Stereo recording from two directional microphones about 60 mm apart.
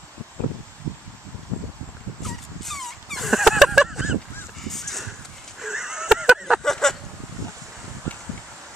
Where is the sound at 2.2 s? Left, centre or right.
Centre.